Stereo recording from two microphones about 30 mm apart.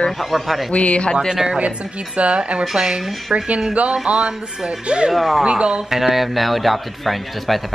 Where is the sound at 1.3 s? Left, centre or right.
Right.